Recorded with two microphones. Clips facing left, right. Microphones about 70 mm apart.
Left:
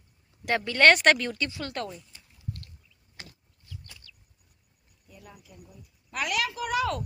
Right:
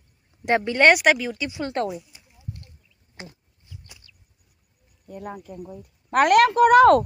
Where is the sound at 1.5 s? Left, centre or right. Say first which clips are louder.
Right 8 dB; right.